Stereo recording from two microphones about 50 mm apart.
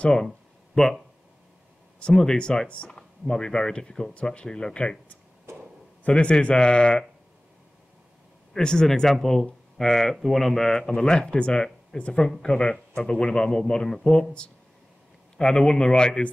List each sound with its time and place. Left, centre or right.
0.0 s speech: centre
0.3 s a sound: centre
2.0 s speech: centre
5.5 s a sound: right
6.0 s a man's voice: left
8.5 s speech: centre
15.3 s speech: centre